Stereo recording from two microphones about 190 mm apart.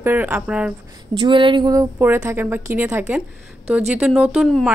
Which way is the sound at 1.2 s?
25° right (ahead or behind).